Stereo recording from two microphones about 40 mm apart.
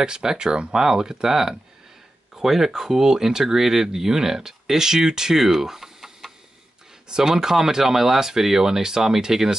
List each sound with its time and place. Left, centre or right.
0.0 s speech: centre
7.1 s speech: centre